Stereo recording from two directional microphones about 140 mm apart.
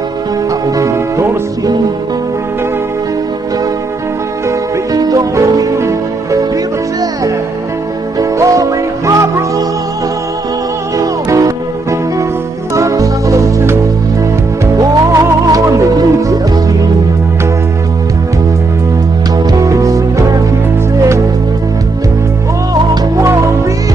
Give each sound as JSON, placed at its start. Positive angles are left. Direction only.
{"t": 0.7, "sound": "music", "side_deg": -20}
{"t": 4.9, "sound": "music", "side_deg": -25}
{"t": 8.2, "sound": "music", "side_deg": -25}
{"t": 11.0, "sound": "music", "side_deg": -25}
{"t": 12.7, "sound": "music", "side_deg": -25}
{"t": 14.8, "sound": "music", "side_deg": -25}
{"t": 19.3, "sound": "music", "side_deg": -25}